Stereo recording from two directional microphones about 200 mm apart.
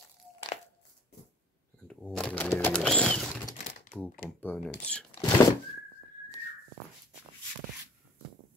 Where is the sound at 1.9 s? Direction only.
5° left (ahead or behind).